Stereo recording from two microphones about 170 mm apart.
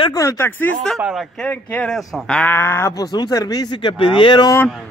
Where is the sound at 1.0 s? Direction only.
Centre (ahead or behind); by 4.6 s 25° left (ahead or behind).